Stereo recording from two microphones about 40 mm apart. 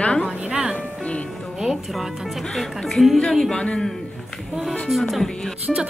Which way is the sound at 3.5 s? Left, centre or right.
Left.